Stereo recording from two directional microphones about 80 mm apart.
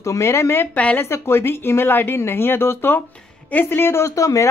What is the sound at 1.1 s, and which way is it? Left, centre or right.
A woman's voice, left.